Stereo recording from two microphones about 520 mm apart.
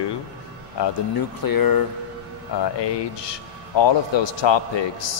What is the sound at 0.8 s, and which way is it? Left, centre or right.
Speech, left.